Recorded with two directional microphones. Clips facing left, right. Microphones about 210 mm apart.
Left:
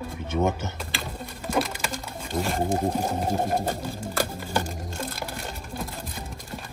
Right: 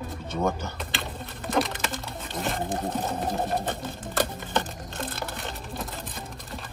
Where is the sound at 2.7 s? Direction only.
10° left (ahead or behind).